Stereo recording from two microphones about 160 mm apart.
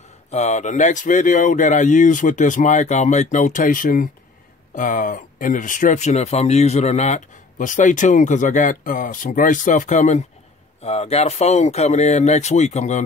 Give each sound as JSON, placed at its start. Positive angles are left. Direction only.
{"t": 0.3, "sound": "speech", "side_deg": 45}